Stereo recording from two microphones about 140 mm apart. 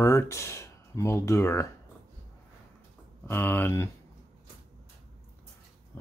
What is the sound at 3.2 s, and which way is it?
Speech, 15° left (ahead or behind).